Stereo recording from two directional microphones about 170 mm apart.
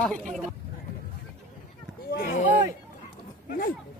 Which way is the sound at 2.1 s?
65° left (ahead or behind).